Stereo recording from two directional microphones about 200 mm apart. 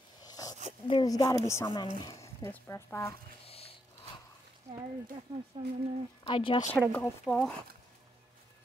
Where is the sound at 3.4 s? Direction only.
30° left (ahead or behind).